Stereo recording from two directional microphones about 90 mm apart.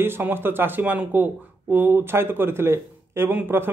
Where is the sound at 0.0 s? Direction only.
25° right (ahead or behind).